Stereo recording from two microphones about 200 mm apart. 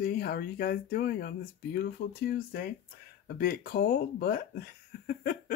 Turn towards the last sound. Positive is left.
turn(degrees=45)  # may be behind; listen again after turning